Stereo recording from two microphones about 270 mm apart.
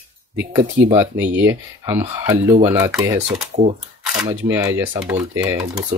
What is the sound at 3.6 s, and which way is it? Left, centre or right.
Speech, right.